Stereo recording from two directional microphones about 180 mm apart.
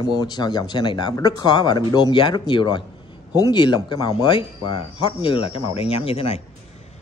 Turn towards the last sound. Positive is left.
turn(degrees=30)  # may be behind; listen again after turning